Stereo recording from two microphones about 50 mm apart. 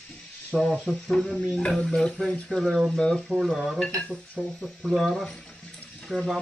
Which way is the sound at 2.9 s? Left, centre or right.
Centre.